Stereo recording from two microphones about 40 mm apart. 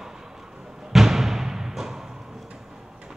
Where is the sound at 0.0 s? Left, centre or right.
Centre.